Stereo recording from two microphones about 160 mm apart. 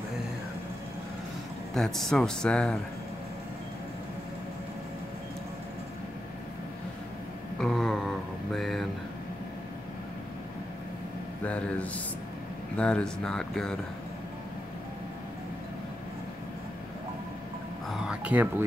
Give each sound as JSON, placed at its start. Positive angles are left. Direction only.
{"t": 1.7, "sound": "speech", "side_deg": 0}
{"t": 7.5, "sound": "mantra", "side_deg": 5}
{"t": 8.5, "sound": "a sound", "side_deg": 0}
{"t": 11.4, "sound": "speech", "side_deg": 10}
{"t": 17.8, "sound": "music", "side_deg": -5}